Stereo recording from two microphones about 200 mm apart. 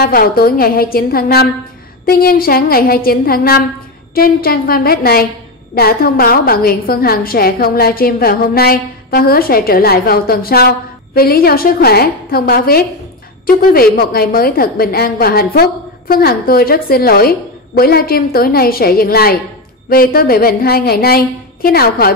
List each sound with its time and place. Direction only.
0.0 s a woman's voice: 50° left (ahead or behind)